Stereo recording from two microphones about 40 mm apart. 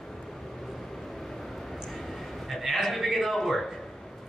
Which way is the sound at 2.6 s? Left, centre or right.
Centre.